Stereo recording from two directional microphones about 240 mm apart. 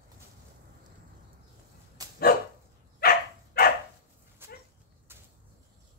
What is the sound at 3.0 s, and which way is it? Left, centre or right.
Dog, left.